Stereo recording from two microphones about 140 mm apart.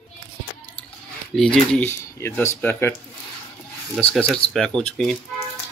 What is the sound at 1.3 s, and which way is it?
Speech, 5° left (ahead or behind).